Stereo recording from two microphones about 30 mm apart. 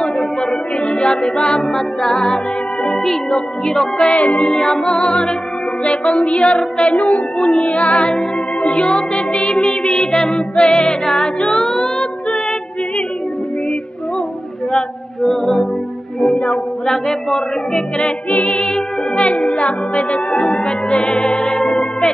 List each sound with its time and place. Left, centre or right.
0.2 s music: left
4.0 s music: left
4.5 s music: left
7.6 s music: left
15.2 s music: centre
16.8 s music: centre
18.3 s music: left